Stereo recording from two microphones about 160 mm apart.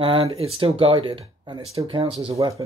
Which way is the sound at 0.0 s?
35° right (ahead or behind).